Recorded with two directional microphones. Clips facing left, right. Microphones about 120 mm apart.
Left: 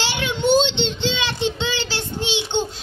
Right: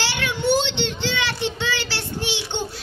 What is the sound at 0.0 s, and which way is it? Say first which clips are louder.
Child singing: left 2 dB; 20° left (ahead or behind).